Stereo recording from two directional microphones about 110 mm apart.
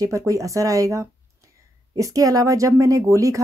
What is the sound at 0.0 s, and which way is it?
Speech, 30° right (ahead or behind).